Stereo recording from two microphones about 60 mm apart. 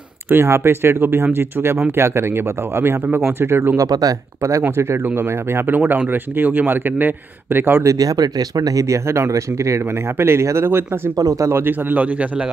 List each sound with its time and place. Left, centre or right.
0.3 s a man's voice: right
3.7 s speech: right
4.4 s speech: right
4.6 s a man's voice: right
5.8 s a man's voice: right
7.8 s speech: right
11.1 s speech: right
11.5 s a man's voice: right
12.0 s a man's voice: right